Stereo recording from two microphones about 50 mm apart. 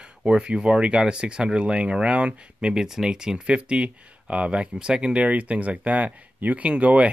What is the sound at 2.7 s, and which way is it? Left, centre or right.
Speech, centre.